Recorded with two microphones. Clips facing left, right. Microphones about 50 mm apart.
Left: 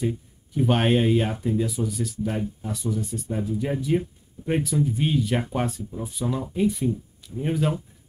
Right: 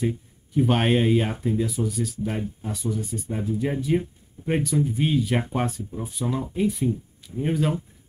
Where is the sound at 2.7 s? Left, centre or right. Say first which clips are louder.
Right 2 dB; centre.